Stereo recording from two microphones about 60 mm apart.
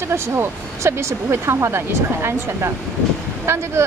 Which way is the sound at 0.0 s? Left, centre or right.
Right.